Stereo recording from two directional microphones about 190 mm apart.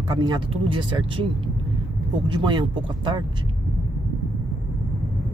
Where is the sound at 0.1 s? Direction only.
20° right (ahead or behind).